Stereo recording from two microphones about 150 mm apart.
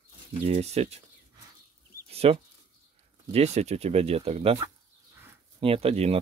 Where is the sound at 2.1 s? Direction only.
40° right (ahead or behind).